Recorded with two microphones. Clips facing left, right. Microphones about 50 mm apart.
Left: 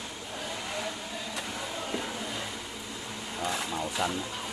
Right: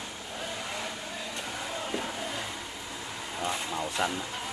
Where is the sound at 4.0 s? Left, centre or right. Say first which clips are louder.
Right 1 dB; right.